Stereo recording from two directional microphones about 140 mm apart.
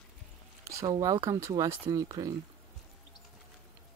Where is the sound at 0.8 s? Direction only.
25° right (ahead or behind).